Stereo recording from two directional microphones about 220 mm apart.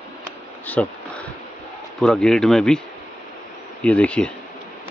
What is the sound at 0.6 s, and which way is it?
Bee, 5° left (ahead or behind).